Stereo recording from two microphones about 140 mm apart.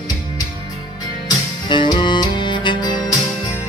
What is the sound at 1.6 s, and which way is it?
Music, 35° left (ahead or behind).